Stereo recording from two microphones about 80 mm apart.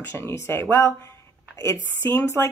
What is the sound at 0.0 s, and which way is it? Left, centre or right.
Speech, left.